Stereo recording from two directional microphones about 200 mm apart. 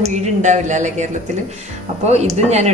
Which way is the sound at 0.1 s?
35° right (ahead or behind).